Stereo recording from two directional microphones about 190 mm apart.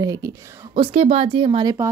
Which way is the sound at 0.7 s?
30° right (ahead or behind).